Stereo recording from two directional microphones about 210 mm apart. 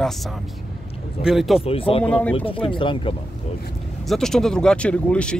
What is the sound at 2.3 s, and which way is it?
Speech, 25° left (ahead or behind).